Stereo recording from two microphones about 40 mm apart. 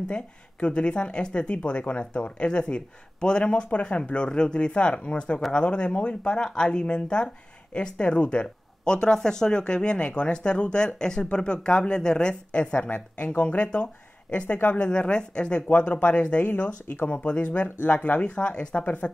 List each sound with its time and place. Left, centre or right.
0.1 s speech: left
15.7 s speech: left
16.4 s speech: left
17.2 s speech: left
18.3 s speech: left
18.8 s speech: left